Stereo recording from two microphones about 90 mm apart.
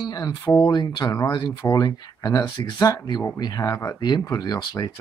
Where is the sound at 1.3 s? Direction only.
55° left (ahead or behind).